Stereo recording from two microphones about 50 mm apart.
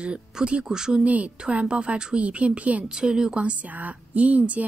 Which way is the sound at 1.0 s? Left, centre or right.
Right.